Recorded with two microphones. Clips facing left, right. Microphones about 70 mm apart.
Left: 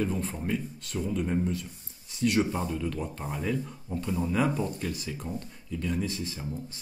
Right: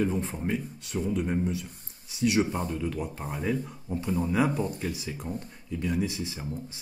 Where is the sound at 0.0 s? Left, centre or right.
Centre.